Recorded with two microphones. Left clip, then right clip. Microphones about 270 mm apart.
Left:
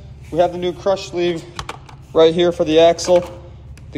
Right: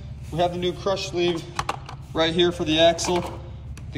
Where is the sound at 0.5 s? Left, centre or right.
Centre.